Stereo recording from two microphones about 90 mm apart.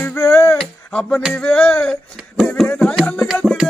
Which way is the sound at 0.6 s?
10° left (ahead or behind).